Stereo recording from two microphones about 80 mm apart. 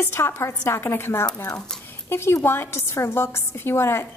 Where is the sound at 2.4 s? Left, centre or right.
Left.